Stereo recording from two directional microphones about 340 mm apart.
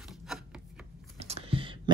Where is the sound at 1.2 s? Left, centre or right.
Centre.